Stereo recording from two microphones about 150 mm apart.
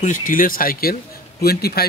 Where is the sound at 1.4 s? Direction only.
90° left.